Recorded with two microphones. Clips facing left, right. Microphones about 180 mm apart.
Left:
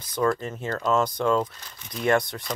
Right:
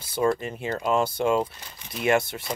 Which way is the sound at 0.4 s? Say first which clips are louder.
Even; 15° right (ahead or behind).